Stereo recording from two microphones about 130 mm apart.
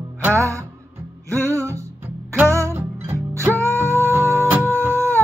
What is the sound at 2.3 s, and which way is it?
Music, 10° right (ahead or behind).